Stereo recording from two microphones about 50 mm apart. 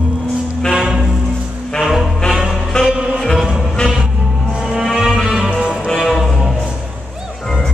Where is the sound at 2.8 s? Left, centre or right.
Centre.